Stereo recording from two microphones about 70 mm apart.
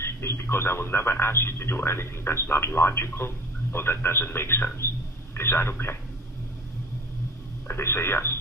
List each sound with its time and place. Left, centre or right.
0.0 s speech: left
7.6 s speech: left